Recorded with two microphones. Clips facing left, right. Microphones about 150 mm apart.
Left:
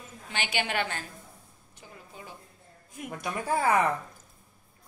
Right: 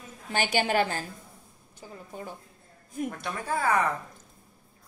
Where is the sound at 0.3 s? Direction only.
40° right (ahead or behind).